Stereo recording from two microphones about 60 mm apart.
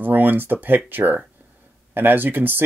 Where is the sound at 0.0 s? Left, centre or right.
Right.